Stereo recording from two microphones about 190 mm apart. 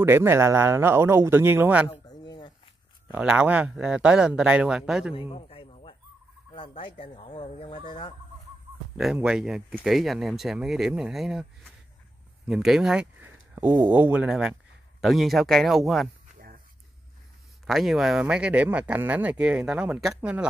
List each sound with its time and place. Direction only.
0.0 s speech: 15° right (ahead or behind)
1.9 s a sound: 20° left (ahead or behind)
3.1 s speech: 5° right (ahead or behind)
5.3 s a sound: 30° left (ahead or behind)
6.8 s speech: 25° left (ahead or behind)
8.9 s speech: 5° right (ahead or behind); by 13.9 s 20° right (ahead or behind)
13.9 s speech: 10° right (ahead or behind)
17.6 s speech: centre (ahead or behind)